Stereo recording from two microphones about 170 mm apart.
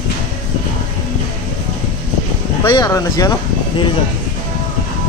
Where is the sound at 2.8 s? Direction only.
20° left (ahead or behind).